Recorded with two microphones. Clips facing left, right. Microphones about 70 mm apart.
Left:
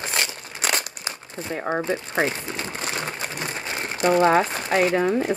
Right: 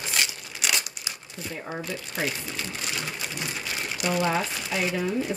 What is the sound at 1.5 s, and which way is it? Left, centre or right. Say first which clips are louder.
Speech: left 10 dB; left.